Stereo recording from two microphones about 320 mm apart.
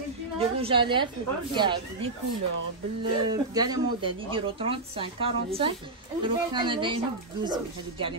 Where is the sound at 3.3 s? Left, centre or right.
Centre.